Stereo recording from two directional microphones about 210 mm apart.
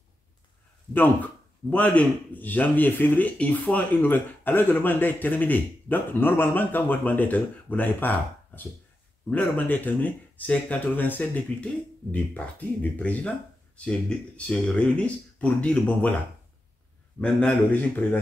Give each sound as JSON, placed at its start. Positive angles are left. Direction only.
{"t": 0.9, "sound": "speech", "side_deg": 10}
{"t": 17.2, "sound": "speech", "side_deg": 5}